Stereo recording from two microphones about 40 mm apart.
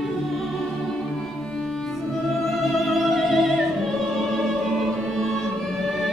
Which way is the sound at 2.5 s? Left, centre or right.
Centre.